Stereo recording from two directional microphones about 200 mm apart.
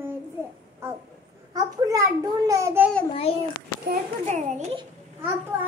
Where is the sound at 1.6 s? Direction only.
20° right (ahead or behind).